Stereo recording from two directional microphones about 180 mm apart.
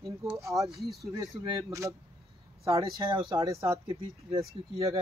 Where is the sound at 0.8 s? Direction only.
Centre (ahead or behind).